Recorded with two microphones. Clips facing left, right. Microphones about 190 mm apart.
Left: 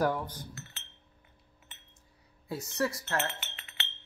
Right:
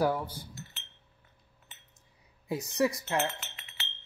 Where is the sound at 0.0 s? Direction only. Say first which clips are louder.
Right 1 dB; 10° right (ahead or behind).